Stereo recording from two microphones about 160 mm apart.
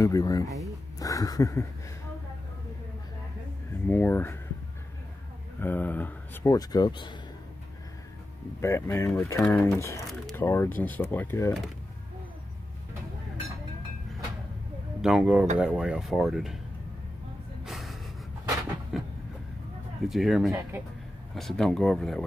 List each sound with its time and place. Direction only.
0.0 s a sound: 20° left (ahead or behind)
3.8 s speech: 10° left (ahead or behind)
5.6 s speech: 10° left (ahead or behind); by 7.2 s 30° left (ahead or behind)
8.5 s speech: 15° left (ahead or behind)
9.8 s a sound: 20° left (ahead or behind)
10.3 s speech: 15° left (ahead or behind)
15.0 s speech: 5° right (ahead or behind)
17.6 s snort: centre (ahead or behind)
18.9 s speech: centre (ahead or behind)